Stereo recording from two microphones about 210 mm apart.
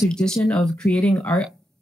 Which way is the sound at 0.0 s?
5° left (ahead or behind).